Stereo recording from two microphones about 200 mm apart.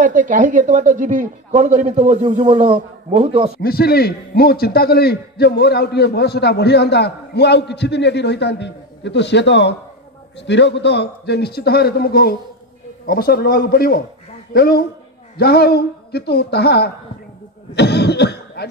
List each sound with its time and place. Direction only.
0.0 s a man's voice: 40° right (ahead or behind)
3.6 s a man's voice: 50° left (ahead or behind)
17.7 s cough: 55° left (ahead or behind)